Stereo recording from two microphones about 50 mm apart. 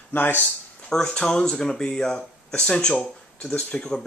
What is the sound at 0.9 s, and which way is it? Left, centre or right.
Speech, centre.